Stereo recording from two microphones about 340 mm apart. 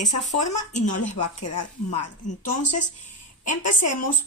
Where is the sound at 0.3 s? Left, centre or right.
Left.